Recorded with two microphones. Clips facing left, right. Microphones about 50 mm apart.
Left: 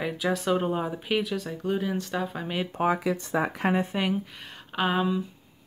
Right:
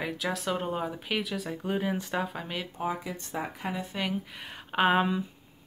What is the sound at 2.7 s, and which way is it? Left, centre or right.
Speech, left.